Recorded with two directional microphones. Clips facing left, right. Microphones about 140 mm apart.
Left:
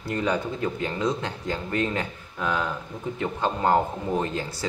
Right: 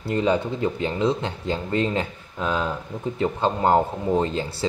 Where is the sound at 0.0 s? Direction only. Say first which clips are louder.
Right 4 dB; 25° right (ahead or behind).